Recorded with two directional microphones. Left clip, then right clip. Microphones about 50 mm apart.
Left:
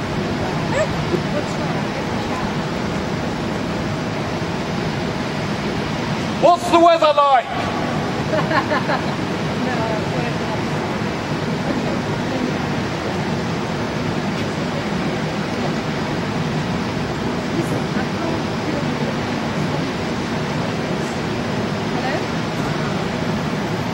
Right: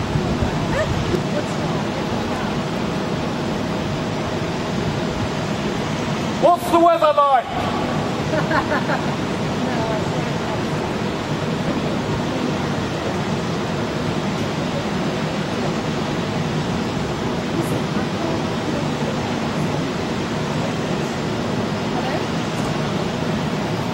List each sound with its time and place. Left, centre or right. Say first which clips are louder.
6.4 s a man's voice: left 2 dB; left